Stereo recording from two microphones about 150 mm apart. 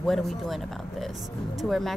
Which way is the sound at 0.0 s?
Centre (ahead or behind).